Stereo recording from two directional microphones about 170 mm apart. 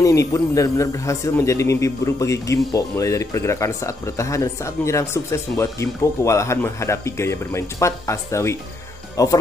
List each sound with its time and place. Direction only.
0.0 s speech: 20° left (ahead or behind)